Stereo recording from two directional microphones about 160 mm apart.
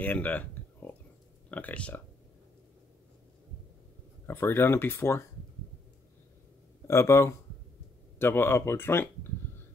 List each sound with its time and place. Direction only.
0.0 s a sound: 10° left (ahead or behind)
1.5 s speech: 10° left (ahead or behind)
4.3 s speech: 15° left (ahead or behind)
6.9 s speech: 15° left (ahead or behind)